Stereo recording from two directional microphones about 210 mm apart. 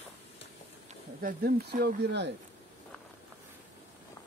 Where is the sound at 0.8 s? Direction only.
45° right (ahead or behind).